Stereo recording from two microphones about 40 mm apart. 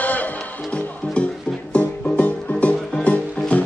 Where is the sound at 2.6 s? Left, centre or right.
Left.